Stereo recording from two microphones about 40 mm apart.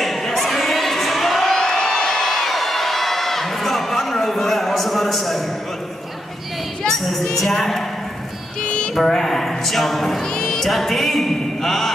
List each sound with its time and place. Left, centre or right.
0.0 s a sound: centre
1.6 s crowd: centre
7.3 s a sound: centre
8.6 s music: left
8.9 s music: centre
10.2 s music: centre
10.6 s music: centre